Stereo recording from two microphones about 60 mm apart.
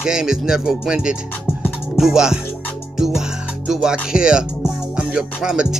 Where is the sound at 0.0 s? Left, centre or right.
Centre.